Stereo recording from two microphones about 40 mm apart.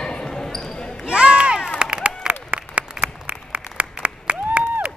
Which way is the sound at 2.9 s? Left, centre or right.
Right.